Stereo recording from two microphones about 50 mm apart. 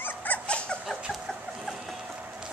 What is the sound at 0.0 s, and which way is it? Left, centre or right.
Dog, left.